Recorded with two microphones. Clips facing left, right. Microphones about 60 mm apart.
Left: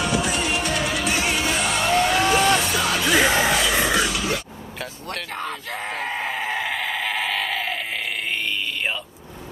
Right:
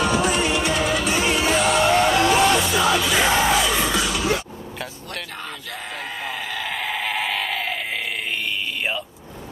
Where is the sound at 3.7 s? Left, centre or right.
Left.